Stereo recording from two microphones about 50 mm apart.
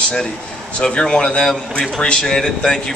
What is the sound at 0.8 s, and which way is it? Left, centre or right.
Speech, centre.